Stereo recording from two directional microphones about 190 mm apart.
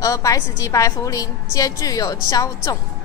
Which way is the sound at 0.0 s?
20° left (ahead or behind).